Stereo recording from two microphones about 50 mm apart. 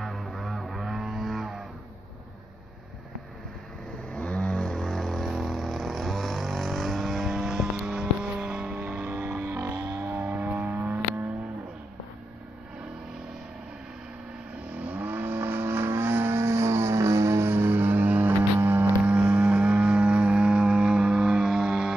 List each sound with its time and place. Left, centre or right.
0.0 s music: centre
4.1 s vehicle: centre; by 9.6 s right
9.6 s vehicle: right
9.9 s vehicle: right
14.8 s vehicle: right
18.6 s a sound: right
19.0 s vehicle: right